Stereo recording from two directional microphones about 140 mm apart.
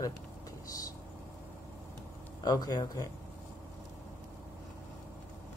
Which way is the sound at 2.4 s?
30° left (ahead or behind).